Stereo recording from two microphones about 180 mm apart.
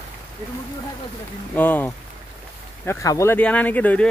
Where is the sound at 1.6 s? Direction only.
10° left (ahead or behind).